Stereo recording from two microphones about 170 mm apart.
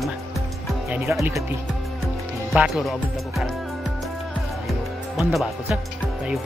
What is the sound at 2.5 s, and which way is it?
Speech, centre (ahead or behind).